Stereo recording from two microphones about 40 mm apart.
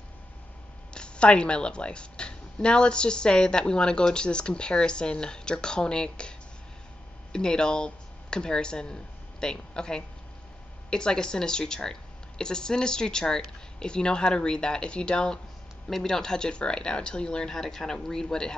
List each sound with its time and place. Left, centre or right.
0.9 s speech: left
7.3 s speech: centre